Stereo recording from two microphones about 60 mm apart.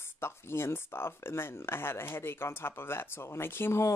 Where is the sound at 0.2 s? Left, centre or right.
Left.